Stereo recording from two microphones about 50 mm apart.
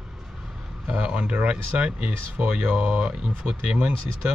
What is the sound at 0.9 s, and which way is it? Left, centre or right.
Speech, right.